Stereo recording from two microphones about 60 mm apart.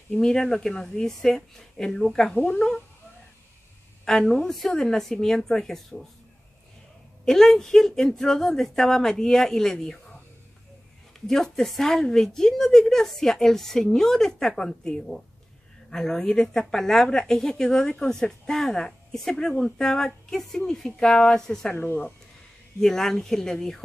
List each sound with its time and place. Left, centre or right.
0.2 s a woman's voice: centre
4.0 s a woman's voice: centre
7.2 s a woman's voice: centre
11.1 s a woman's voice: centre
21.7 s speech: left
22.8 s a woman's voice: centre